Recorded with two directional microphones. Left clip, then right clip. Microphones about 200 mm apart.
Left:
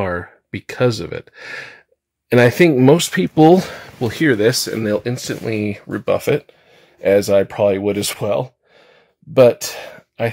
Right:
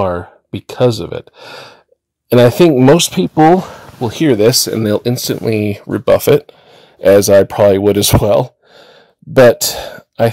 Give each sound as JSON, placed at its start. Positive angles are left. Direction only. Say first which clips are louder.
{"t": 0.0, "sound": "a sound", "louder": "right 6 dB", "side_deg": 10}
{"t": 0.7, "sound": "speech", "louder": "right 5 dB", "side_deg": -15}
{"t": 2.3, "sound": "speech", "louder": "right 4 dB", "side_deg": -25}
{"t": 3.3, "sound": "speech", "louder": "right 2 dB", "side_deg": 10}
{"t": 4.3, "sound": "speech", "louder": "right 6 dB", "side_deg": -40}